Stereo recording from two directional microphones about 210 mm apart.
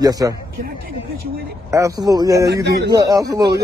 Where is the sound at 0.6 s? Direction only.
45° right (ahead or behind).